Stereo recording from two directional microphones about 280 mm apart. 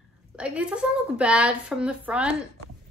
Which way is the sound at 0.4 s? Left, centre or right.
Centre.